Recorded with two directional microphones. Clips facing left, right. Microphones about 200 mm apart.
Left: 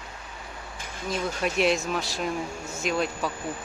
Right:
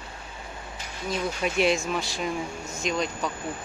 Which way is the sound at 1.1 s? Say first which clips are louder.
Even; centre (ahead or behind).